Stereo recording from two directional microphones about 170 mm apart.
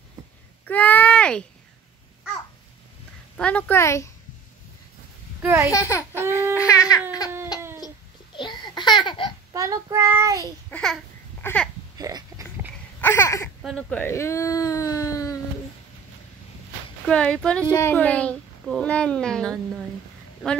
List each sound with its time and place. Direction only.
0.7 s a sound: 10° left (ahead or behind)
3.3 s a child's voice: 5° left (ahead or behind)
5.4 s a child's voice: 15° right (ahead or behind)
5.7 s a child's voice: 15° left (ahead or behind)
6.5 s baby cry: 20° left (ahead or behind)
8.4 s babbling: 25° left (ahead or behind)
9.5 s child singing: 20° right (ahead or behind)
10.7 s a child's voice: 5° left (ahead or behind)
12.0 s a sound: 20° right (ahead or behind)
13.0 s a sound: 15° left (ahead or behind)
13.6 s a child's voice: centre (ahead or behind); by 15.3 s 20° left (ahead or behind)
17.1 s a child's voice: 5° left (ahead or behind)